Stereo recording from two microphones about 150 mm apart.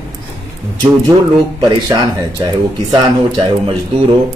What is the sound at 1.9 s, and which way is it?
Speech, 20° right (ahead or behind).